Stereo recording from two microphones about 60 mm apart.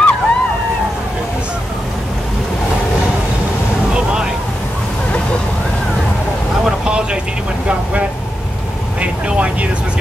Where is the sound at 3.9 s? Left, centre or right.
Centre.